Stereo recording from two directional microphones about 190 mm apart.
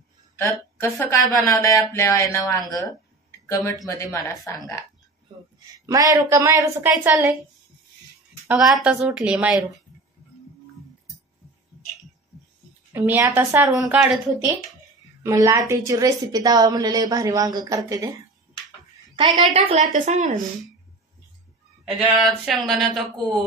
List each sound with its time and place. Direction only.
0.4 s speech: 15° left (ahead or behind)
3.3 s a sound: 15° left (ahead or behind)
3.8 s speech: 15° left (ahead or behind)
5.9 s a woman's voice: 20° right (ahead or behind)
8.5 s a woman's voice: 5° right (ahead or behind)
12.9 s a woman's voice: 10° right (ahead or behind)
15.2 s a woman's voice: 15° right (ahead or behind)
19.5 s a woman's voice: 35° right (ahead or behind)
21.8 s a woman's voice: 5° right (ahead or behind)